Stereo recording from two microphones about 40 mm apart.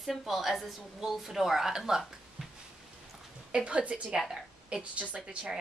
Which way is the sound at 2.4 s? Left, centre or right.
Centre.